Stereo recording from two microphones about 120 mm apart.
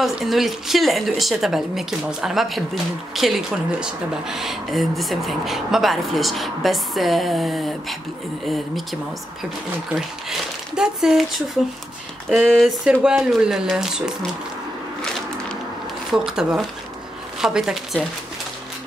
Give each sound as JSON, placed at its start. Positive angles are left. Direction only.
{"t": 0.0, "sound": "a woman's voice", "side_deg": 0}
{"t": 10.7, "sound": "speech", "side_deg": -5}
{"t": 12.3, "sound": "a woman's voice", "side_deg": 0}
{"t": 16.1, "sound": "a woman's voice", "side_deg": -5}